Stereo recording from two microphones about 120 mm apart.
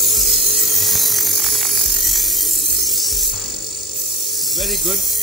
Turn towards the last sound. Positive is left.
turn(degrees=0)  # may be behind; listen again after turning